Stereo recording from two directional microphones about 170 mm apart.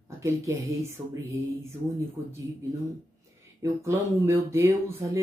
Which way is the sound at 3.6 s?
15° right (ahead or behind).